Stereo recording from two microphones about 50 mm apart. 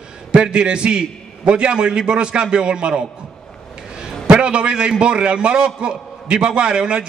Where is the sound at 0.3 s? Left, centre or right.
Centre.